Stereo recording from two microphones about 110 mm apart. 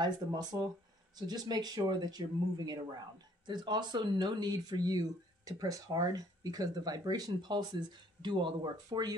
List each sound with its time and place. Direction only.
0.0 s speech: 40° right (ahead or behind)